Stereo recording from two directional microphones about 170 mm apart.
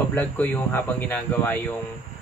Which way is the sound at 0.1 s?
10° left (ahead or behind).